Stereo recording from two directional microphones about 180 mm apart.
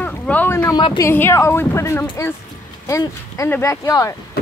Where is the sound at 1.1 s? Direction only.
15° left (ahead or behind).